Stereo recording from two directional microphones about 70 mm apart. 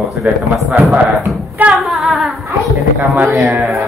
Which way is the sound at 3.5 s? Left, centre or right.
Centre.